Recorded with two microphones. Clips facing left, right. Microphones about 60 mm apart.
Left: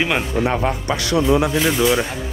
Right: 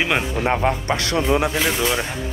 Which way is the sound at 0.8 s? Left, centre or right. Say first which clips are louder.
Left 2 dB; right.